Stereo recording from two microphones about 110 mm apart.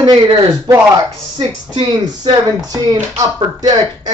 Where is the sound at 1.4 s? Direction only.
40° right (ahead or behind).